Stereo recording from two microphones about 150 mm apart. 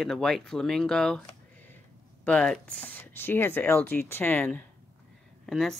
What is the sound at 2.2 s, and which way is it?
Speech, 5° left (ahead or behind).